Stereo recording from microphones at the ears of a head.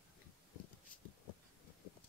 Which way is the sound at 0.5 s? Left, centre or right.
Left.